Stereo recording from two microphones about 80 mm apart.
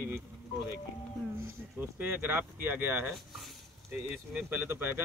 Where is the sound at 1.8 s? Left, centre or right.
Right.